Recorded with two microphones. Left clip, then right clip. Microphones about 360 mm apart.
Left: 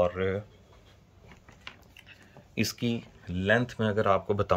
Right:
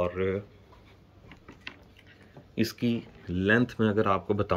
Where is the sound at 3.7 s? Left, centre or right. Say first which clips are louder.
Even; centre.